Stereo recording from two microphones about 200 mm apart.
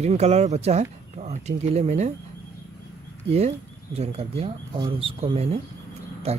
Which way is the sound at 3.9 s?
30° right (ahead or behind).